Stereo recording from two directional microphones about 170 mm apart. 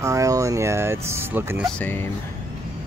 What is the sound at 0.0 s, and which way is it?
Speech, 20° right (ahead or behind).